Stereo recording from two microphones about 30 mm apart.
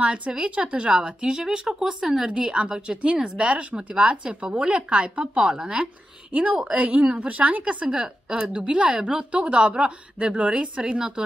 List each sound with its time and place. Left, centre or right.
0.4 s a woman's voice: right
1.0 s a woman's voice: right
6.3 s a woman's voice: right
6.7 s a woman's voice: right
7.6 s a woman's voice: right